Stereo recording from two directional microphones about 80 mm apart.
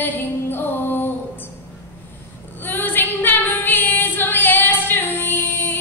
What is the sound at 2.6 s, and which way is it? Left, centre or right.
Female singing, left.